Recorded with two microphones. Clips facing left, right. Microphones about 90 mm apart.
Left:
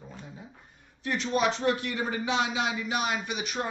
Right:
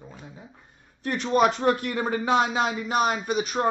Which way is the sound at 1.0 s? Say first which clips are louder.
Right 5 dB; 45° right (ahead or behind).